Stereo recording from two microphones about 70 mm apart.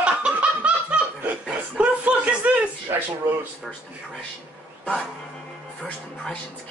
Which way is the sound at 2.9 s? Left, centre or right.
Right.